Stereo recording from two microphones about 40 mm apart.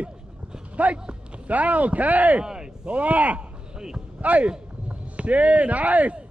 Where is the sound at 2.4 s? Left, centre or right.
Centre.